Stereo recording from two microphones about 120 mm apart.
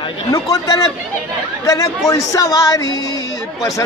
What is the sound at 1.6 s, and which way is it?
Speech, 30° left (ahead or behind).